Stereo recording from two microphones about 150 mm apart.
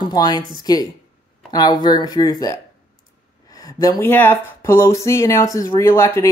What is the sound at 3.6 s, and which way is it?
Speech, 25° left (ahead or behind).